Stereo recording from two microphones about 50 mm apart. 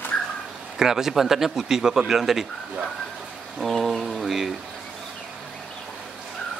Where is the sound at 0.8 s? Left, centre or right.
Centre.